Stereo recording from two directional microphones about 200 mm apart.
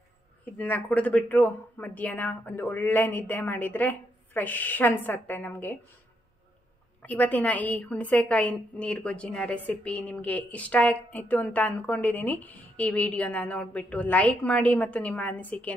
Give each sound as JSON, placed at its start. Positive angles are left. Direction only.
{"t": 0.6, "sound": "a woman's voice", "side_deg": 5}
{"t": 7.0, "sound": "a woman's voice", "side_deg": 5}